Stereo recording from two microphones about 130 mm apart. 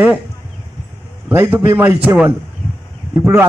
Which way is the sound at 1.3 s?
15° right (ahead or behind).